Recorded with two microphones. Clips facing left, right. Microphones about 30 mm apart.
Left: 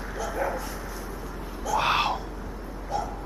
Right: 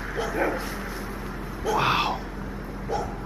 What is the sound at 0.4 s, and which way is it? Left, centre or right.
Bow-wow, right.